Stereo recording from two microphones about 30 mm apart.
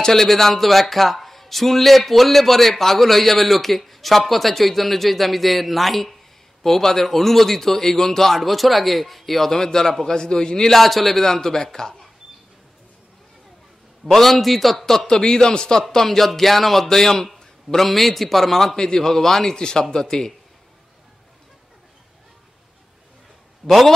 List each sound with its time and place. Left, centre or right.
0.1 s a man's voice: centre
9.5 s a man's voice: centre
10.7 s speech: centre
11.2 s a man's voice: centre
14.1 s speech: centre
14.9 s a man's voice: centre
17.7 s a man's voice: centre
18.8 s a man's voice: centre
23.6 s a man's voice: centre